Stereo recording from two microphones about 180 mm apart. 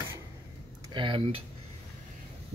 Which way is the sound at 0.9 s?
30° right (ahead or behind).